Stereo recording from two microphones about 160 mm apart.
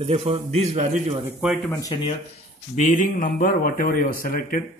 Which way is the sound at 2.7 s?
50° left (ahead or behind).